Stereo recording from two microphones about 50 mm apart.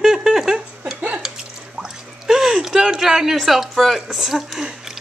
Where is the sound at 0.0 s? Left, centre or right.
Centre.